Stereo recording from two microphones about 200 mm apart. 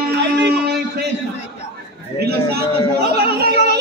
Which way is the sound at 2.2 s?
50° right (ahead or behind).